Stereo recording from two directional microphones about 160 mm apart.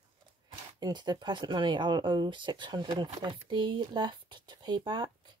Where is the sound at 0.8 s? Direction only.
25° right (ahead or behind).